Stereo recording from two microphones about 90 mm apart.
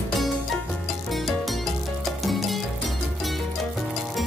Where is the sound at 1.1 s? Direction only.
Centre (ahead or behind).